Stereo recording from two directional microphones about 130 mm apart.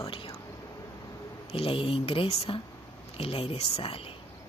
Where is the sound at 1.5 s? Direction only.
45° left (ahead or behind).